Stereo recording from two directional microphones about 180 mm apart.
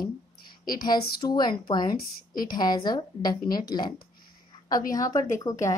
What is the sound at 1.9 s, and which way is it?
Speech, 50° left (ahead or behind).